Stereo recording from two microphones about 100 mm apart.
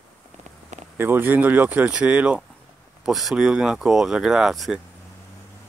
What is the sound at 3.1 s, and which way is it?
Speech, 5° right (ahead or behind).